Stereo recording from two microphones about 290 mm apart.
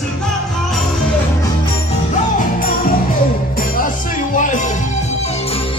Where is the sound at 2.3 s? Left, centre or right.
Left.